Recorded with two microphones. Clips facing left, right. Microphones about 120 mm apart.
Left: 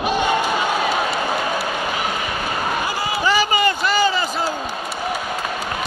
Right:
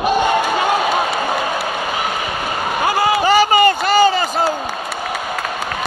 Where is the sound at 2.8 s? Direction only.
65° right (ahead or behind).